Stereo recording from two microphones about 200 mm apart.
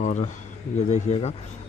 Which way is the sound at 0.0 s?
40° left (ahead or behind).